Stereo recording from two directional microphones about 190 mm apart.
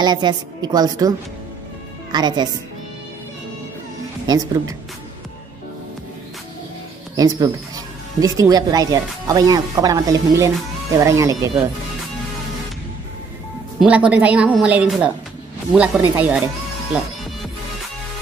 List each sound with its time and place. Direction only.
0.0 s speech: 20° right (ahead or behind)
2.1 s speech: 20° right (ahead or behind)
4.3 s speech: 20° right (ahead or behind)
7.2 s speech: 20° right (ahead or behind)
13.7 s speech: 5° right (ahead or behind)